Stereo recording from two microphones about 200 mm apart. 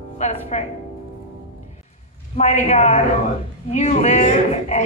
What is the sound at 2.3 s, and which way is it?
Speech, 30° left (ahead or behind).